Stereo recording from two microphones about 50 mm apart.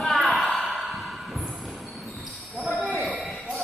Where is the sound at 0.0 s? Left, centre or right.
Centre.